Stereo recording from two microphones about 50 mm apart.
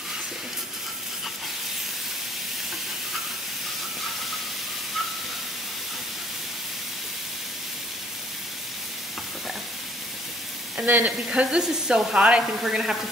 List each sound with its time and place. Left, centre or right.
10.9 s speech: right
11.2 s speech: centre
12.6 s stir: centre